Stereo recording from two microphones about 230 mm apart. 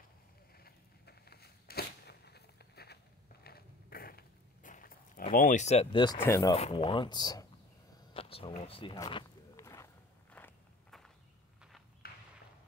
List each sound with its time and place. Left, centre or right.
0.6 s a sound: left
3.4 s dog: left; by 6.5 s centre
6.5 s speech: left
8.1 s a sound: left
10.3 s walk: centre
12.0 s walk: left